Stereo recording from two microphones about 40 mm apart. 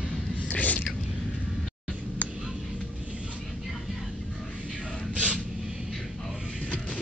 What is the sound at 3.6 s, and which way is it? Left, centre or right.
Music, centre.